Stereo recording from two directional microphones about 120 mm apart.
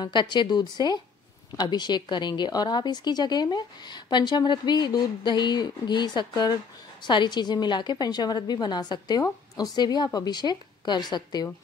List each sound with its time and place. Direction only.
0.0 s a woman's voice: 40° left (ahead or behind)